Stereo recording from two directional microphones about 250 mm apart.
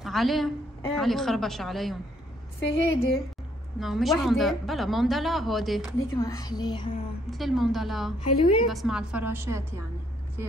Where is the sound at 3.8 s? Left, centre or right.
Centre.